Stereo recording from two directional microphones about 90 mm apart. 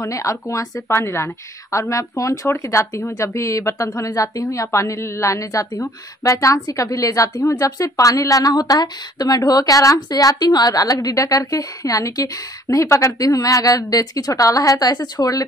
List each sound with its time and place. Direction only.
0.0 s a woman's voice: 40° left (ahead or behind)